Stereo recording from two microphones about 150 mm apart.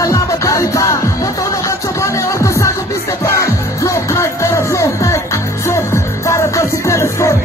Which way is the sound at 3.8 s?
20° left (ahead or behind).